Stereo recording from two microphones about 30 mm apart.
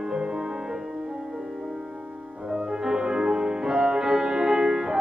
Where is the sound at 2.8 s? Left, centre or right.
Right.